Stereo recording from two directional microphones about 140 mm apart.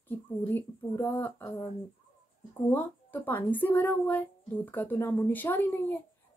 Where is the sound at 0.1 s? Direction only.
15° left (ahead or behind).